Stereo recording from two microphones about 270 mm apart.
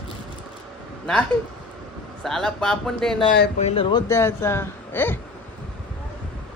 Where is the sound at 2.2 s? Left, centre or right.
Centre.